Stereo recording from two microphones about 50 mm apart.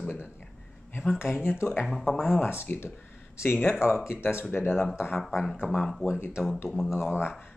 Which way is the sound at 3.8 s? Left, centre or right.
Left.